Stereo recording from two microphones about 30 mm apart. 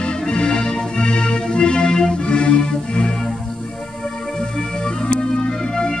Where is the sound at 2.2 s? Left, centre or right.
Left.